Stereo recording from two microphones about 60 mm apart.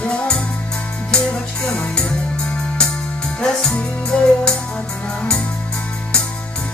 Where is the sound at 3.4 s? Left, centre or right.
Centre.